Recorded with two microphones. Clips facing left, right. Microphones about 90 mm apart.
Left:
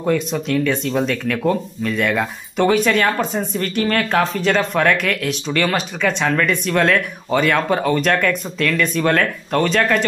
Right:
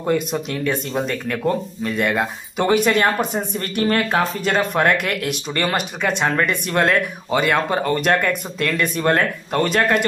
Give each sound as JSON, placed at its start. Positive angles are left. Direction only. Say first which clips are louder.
{"t": 0.0, "sound": "speech", "louder": "left 1 dB", "side_deg": -10}